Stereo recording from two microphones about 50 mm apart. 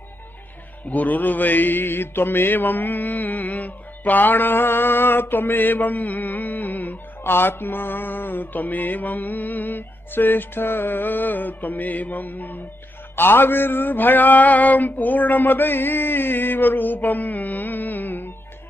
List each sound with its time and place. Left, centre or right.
0.8 s mantra: left